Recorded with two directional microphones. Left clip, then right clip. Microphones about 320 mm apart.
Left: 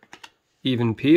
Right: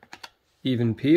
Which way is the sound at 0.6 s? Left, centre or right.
Centre.